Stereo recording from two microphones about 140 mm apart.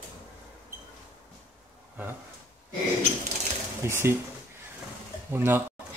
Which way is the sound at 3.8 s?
20° right (ahead or behind).